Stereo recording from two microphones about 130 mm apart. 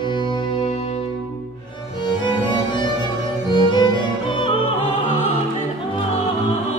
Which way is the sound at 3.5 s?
35° left (ahead or behind).